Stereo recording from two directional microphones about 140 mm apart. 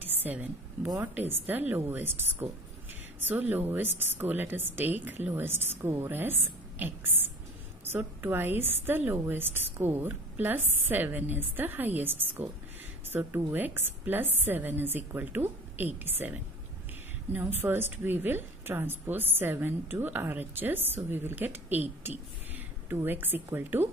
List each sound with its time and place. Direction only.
0.0 s a sound: 15° right (ahead or behind)
1.0 s a woman's voice: 10° right (ahead or behind)
17.6 s a woman's voice: 15° right (ahead or behind)